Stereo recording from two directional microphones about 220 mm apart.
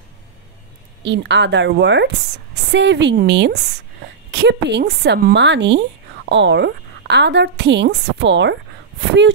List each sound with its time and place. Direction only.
1.0 s a woman's voice: 55° right (ahead or behind)